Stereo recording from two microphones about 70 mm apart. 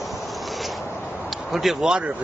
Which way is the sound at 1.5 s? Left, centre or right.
Centre.